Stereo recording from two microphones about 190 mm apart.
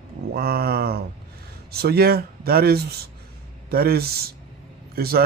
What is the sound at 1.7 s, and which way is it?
Speech, 55° right (ahead or behind).